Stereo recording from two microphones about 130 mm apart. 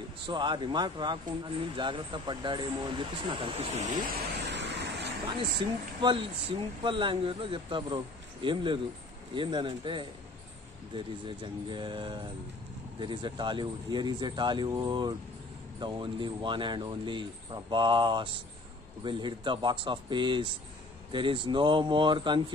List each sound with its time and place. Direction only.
0.3 s speech: 35° right (ahead or behind)
3.7 s speech: 85° right
5.2 s speech: 40° right (ahead or behind)